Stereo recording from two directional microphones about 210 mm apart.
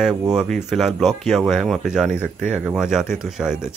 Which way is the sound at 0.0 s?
5° right (ahead or behind).